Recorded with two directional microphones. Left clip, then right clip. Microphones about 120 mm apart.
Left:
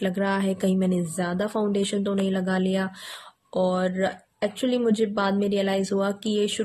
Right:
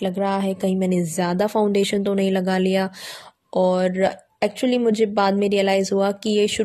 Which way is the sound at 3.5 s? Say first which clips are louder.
Right 5 dB; 50° right (ahead or behind).